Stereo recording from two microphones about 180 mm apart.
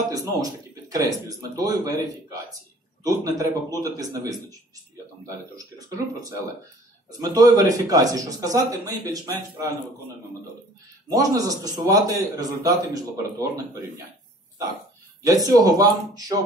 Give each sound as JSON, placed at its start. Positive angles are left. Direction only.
{"t": 0.1, "sound": "a man's voice", "side_deg": -20}
{"t": 11.1, "sound": "a man's voice", "side_deg": -20}
{"t": 15.2, "sound": "a man's voice", "side_deg": -20}